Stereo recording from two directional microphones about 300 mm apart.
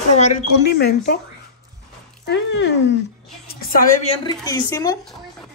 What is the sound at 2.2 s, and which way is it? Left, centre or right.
A woman's voice, left.